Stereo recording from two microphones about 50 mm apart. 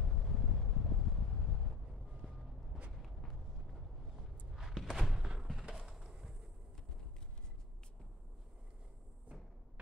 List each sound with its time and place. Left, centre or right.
0.0 s wind noise: centre
2.2 s vehicle: centre
4.6 s a sound: centre